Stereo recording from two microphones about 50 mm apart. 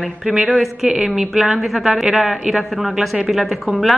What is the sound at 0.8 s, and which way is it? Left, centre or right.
Speech, right.